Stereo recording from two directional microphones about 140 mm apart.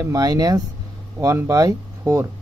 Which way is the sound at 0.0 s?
25° right (ahead or behind).